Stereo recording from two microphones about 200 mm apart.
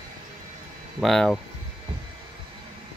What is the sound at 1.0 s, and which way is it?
Speech, 5° left (ahead or behind).